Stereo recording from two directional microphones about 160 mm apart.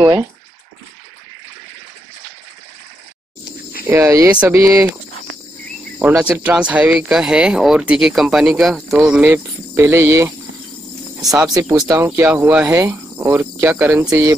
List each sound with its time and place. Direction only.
3.8 s speech: 15° right (ahead or behind)
6.1 s speech: 10° right (ahead or behind)
9.3 s speech: 15° right (ahead or behind)
11.1 s speech: 5° right (ahead or behind)
11.8 s speech: 20° right (ahead or behind)